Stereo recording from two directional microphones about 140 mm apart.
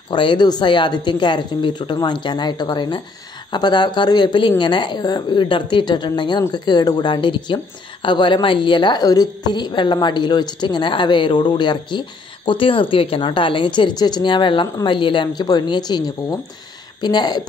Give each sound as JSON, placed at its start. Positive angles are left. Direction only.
{"t": 0.1, "sound": "a woman's voice", "side_deg": 35}